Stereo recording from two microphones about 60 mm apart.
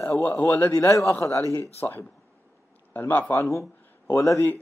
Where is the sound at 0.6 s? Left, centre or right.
Left.